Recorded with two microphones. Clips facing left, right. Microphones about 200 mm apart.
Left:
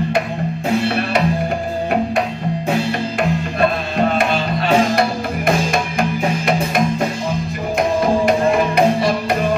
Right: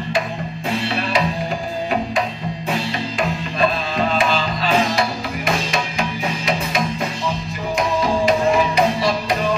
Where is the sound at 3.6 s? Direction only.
60° left (ahead or behind).